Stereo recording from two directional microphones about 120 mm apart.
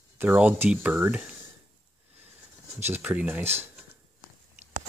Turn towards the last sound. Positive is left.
turn(degrees=-15)  # may be behind; listen again after turning